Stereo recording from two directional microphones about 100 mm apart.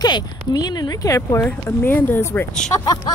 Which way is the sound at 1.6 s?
20° left (ahead or behind).